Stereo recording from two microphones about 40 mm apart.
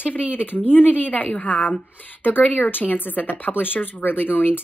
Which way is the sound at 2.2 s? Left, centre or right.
Left.